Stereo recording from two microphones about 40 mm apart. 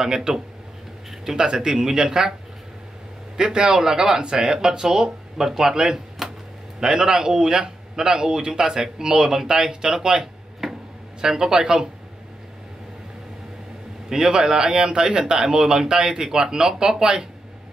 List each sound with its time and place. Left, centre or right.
0.0 s speech: centre
3.3 s speech: centre
10.6 s a sound: centre
11.1 s speech: centre
14.0 s speech: centre